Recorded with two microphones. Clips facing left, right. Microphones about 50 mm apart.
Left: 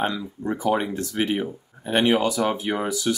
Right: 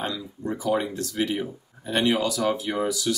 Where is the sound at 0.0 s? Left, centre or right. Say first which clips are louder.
Left 4 dB; left.